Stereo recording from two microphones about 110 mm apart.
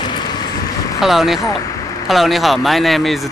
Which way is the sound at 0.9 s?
5° right (ahead or behind).